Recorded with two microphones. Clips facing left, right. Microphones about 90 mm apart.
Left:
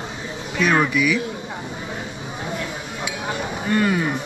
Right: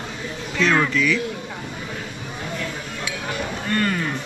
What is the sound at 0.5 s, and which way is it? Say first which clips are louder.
Speech: left 1 dB; 10° left (ahead or behind).